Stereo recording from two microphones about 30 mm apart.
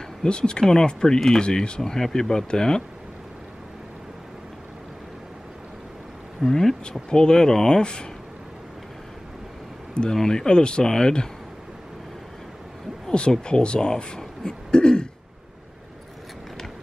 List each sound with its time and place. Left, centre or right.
0.2 s speech: left
1.8 s speech: centre
6.4 s speech: centre
6.8 s speech: left
10.2 s speech: left
13.3 s speech: left